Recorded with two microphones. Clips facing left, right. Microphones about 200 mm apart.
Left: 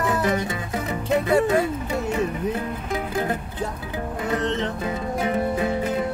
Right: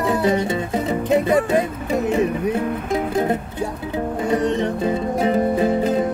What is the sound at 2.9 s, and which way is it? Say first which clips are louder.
Music: right 5 dB; 25° right (ahead or behind).